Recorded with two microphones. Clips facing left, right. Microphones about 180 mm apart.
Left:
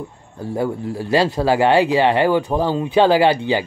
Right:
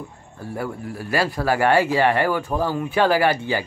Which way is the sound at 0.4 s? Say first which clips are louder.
Left 7 dB; 20° left (ahead or behind).